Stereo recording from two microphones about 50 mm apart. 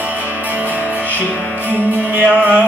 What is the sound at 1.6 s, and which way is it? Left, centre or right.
Music, right.